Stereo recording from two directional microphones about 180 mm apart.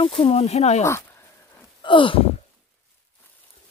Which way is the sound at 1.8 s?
30° left (ahead or behind).